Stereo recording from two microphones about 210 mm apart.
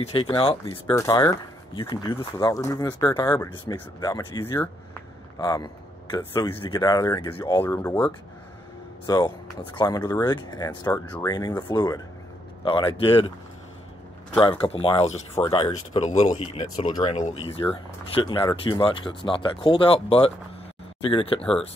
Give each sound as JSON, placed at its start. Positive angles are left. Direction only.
{"t": 0.0, "sound": "speech", "side_deg": 25}
{"t": 14.4, "sound": "speech", "side_deg": 25}
{"t": 21.4, "sound": "speech", "side_deg": 0}